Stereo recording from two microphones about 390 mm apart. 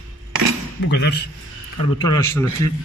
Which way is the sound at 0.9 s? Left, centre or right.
Left.